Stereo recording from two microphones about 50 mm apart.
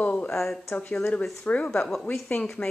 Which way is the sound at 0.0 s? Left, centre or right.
Left.